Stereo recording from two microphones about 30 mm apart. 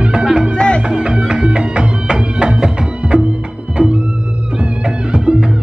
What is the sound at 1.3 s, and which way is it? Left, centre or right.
Music, right.